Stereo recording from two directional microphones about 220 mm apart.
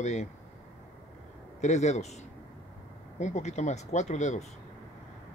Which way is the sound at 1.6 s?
30° left (ahead or behind).